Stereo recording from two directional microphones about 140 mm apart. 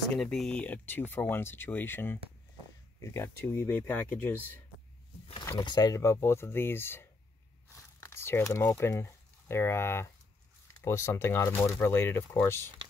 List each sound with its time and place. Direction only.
0.1 s speech: 5° left (ahead or behind)
5.5 s speech: 25° left (ahead or behind)